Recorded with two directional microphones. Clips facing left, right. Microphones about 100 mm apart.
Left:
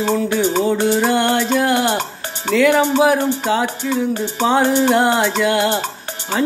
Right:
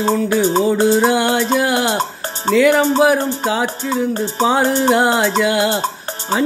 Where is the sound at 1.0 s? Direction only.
5° right (ahead or behind).